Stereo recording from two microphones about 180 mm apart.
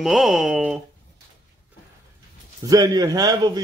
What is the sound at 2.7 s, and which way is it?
Speech, 20° right (ahead or behind).